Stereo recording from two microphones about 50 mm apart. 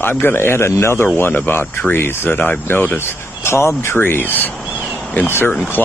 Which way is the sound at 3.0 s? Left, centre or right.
Left.